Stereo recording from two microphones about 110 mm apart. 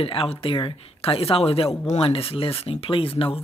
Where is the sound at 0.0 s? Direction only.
60° left (ahead or behind).